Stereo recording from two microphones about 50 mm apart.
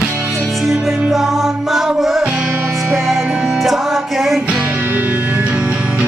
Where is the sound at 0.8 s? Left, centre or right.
Centre.